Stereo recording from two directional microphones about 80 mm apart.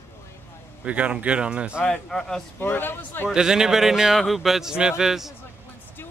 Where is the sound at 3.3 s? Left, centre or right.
Centre.